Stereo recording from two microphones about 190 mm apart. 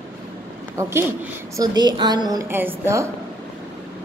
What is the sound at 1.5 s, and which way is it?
A woman's voice, 20° right (ahead or behind).